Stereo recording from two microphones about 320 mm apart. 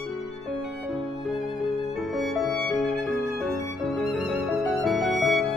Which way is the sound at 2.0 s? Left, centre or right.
Centre.